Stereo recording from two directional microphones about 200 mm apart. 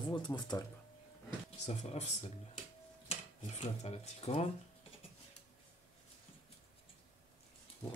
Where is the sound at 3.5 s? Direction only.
30° left (ahead or behind).